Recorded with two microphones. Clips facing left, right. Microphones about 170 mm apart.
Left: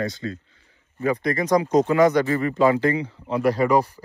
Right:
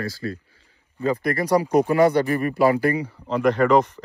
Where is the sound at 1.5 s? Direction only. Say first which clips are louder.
Even; 10° right (ahead or behind).